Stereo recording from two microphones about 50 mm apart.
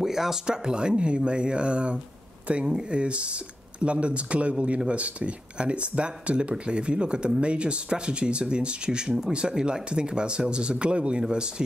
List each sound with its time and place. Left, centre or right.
0.0 s speech: centre